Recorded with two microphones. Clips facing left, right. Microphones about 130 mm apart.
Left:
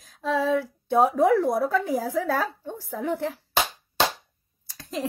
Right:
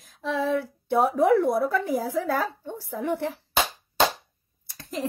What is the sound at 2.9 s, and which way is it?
Speech, 15° right (ahead or behind).